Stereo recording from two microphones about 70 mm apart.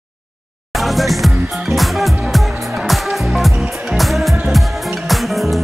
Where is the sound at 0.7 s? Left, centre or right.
Centre.